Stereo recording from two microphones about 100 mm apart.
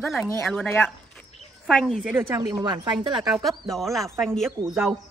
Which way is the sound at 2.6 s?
45° right (ahead or behind).